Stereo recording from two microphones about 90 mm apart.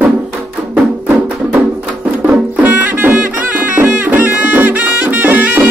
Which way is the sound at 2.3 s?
20° right (ahead or behind).